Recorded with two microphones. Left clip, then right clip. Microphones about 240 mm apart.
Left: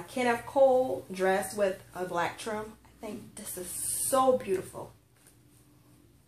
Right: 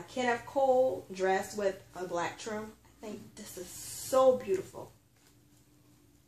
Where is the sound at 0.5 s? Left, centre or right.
Left.